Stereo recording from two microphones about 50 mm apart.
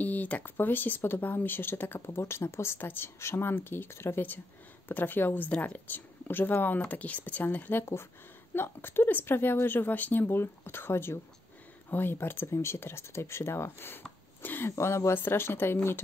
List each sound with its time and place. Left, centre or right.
0.0 s a woman's voice: left
2.0 s speech: left
3.2 s speech: left
3.5 s a woman's voice: left
4.8 s speech: left
7.8 s a woman's voice: left
12.5 s speech: left
14.4 s a sound: left
14.8 s speech: left
15.1 s a woman's voice: left